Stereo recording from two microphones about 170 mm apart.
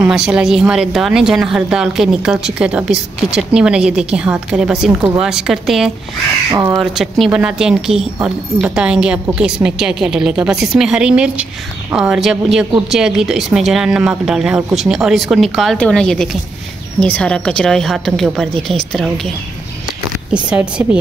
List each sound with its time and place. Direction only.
0.0 s speech: 5° right (ahead or behind)
6.5 s a woman's voice: 20° right (ahead or behind)
6.8 s speech: centre (ahead or behind)
20.3 s a woman's voice: 5° right (ahead or behind)